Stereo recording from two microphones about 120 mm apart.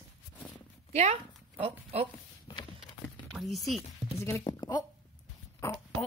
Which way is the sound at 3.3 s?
Centre (ahead or behind).